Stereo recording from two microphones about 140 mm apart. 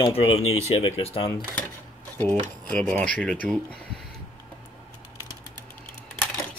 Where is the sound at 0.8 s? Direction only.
40° left (ahead or behind).